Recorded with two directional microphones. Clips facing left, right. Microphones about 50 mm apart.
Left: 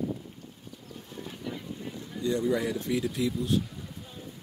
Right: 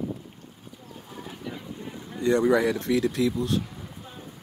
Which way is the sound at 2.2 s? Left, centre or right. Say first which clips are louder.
Right 7 dB; right.